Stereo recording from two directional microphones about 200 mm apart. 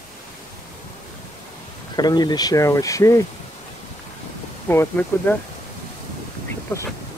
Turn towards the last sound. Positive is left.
turn(degrees=10)  # may be behind; listen again after turning